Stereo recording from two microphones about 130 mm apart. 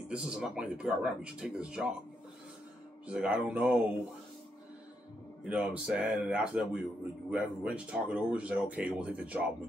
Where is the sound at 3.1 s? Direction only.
10° right (ahead or behind).